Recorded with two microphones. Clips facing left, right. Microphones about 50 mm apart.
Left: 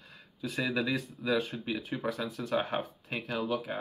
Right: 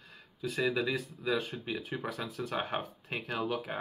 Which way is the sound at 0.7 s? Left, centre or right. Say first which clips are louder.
Left 1 dB; centre.